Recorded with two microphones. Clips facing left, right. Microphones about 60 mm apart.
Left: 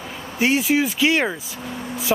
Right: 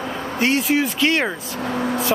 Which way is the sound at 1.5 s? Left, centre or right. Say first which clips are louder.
Right 8 dB; right.